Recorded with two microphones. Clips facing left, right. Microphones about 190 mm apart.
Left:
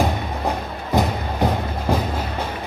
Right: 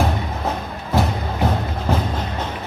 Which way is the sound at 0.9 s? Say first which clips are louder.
Even; 15° left (ahead or behind).